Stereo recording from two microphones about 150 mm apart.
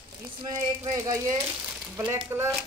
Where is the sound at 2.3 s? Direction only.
15° right (ahead or behind).